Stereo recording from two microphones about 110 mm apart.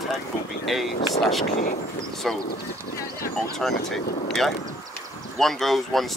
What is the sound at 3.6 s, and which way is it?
Speech, 5° left (ahead or behind).